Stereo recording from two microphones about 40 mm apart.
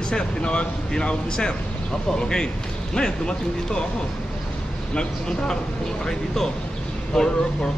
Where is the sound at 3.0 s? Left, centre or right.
Left.